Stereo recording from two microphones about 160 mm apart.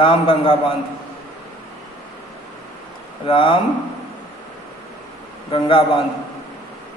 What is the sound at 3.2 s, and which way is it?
Speech, 35° left (ahead or behind).